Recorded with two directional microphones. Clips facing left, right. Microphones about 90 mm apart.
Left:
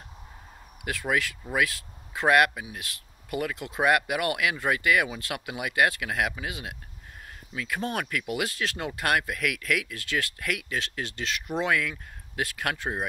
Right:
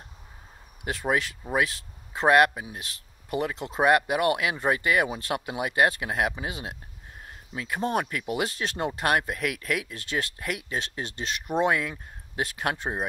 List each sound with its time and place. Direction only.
0.8 s speech: 30° right (ahead or behind)